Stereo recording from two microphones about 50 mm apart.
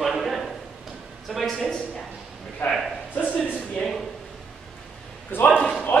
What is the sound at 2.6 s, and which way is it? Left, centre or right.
Speech, left.